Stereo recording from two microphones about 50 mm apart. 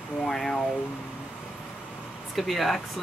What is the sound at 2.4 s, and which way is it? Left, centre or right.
Speech, centre.